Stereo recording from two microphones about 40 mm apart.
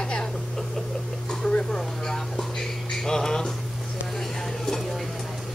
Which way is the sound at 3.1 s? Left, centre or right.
Centre.